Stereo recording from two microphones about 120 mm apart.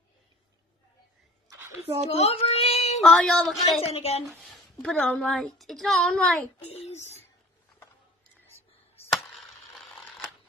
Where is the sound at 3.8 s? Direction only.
60° left (ahead or behind).